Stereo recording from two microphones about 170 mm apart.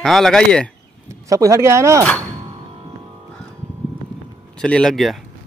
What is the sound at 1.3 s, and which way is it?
Speech, 20° right (ahead or behind).